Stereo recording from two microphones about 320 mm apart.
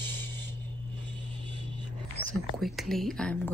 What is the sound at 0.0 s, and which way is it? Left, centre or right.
Creak, centre.